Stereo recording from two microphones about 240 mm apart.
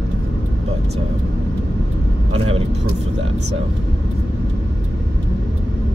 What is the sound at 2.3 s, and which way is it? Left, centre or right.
Speech, right.